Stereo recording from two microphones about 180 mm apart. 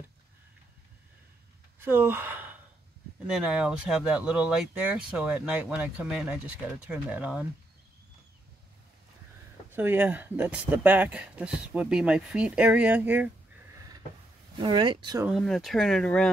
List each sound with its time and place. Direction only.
1.8 s gasp: 10° right (ahead or behind)
3.3 s speech: 5° right (ahead or behind)
9.8 s speech: 10° right (ahead or behind)
14.6 s speech: 25° right (ahead or behind)
15.2 s speech: centre (ahead or behind)